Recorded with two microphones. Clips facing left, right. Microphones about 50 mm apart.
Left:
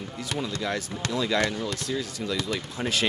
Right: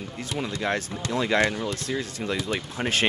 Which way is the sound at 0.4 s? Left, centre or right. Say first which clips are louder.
Right 3 dB; right.